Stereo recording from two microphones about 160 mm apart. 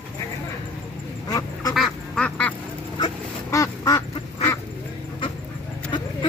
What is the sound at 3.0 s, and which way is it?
Duck, 20° left (ahead or behind).